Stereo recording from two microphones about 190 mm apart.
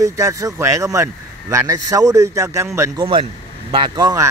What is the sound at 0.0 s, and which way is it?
A man's voice, 15° right (ahead or behind).